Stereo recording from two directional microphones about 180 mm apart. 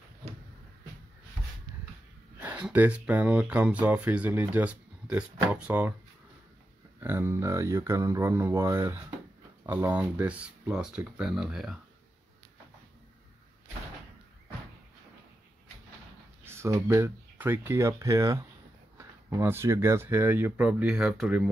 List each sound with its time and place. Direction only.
2.3 s speech: 10° right (ahead or behind)
7.0 s speech: 15° right (ahead or behind)
16.4 s speech: 15° right (ahead or behind)